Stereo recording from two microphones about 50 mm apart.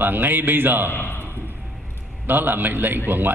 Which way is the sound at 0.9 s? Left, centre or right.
Left.